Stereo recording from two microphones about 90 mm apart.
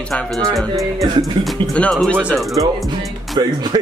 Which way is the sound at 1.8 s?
15° left (ahead or behind).